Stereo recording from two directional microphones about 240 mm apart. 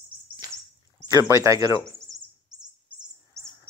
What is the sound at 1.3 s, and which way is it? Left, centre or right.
Speech, centre.